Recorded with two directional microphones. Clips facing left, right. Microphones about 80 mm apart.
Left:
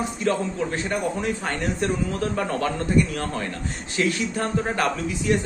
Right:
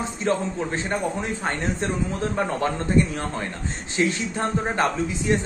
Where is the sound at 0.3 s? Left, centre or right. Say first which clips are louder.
Even; right.